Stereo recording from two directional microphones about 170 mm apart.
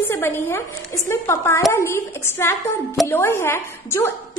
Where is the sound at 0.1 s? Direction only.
15° left (ahead or behind).